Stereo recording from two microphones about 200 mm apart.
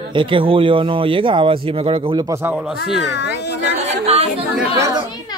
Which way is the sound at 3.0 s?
60° left (ahead or behind).